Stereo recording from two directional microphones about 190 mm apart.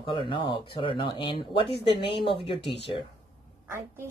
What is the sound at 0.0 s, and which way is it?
Speech, 25° left (ahead or behind).